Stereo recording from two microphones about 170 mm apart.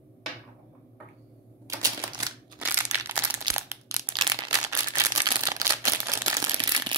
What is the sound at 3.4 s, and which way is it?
Crumpling, 20° right (ahead or behind).